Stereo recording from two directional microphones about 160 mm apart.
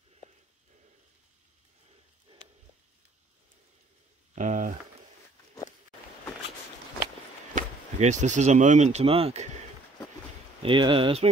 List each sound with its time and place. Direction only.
2.3 s a sound: 35° right (ahead or behind)
4.4 s speech: 55° right (ahead or behind)
7.5 s speech: 50° right (ahead or behind)
10.6 s speech: 30° right (ahead or behind)